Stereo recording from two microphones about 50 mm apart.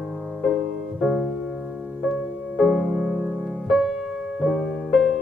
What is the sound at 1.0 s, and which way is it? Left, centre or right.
Music, centre.